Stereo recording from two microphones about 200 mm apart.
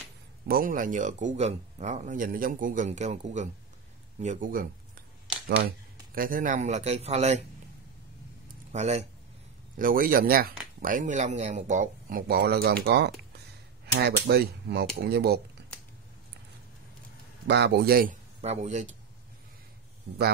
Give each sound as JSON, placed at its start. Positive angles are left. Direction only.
{"t": 0.5, "sound": "speech", "side_deg": -45}
{"t": 6.1, "sound": "speech", "side_deg": -45}
{"t": 8.7, "sound": "speech", "side_deg": -35}
{"t": 9.8, "sound": "speech", "side_deg": -45}
{"t": 17.5, "sound": "speech", "side_deg": -55}
{"t": 18.4, "sound": "speech", "side_deg": -35}